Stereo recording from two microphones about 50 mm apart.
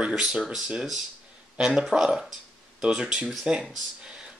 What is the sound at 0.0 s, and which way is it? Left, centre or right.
Speech, centre.